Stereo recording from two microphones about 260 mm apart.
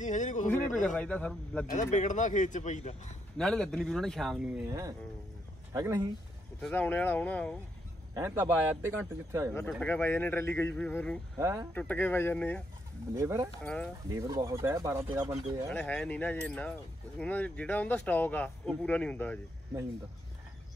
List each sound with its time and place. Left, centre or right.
0.0 s a sound: left
0.8 s speech: centre
1.7 s speech: left
3.3 s speech: centre
4.6 s speech: centre
6.6 s speech: centre
8.1 s speech: centre
9.5 s speech: centre
11.3 s speech: centre
11.7 s speech: centre
13.1 s speech: centre
13.6 s speech: centre
14.0 s speech: centre
15.7 s speech: centre